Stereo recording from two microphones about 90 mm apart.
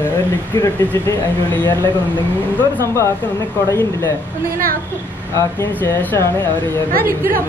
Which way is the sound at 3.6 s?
25° left (ahead or behind).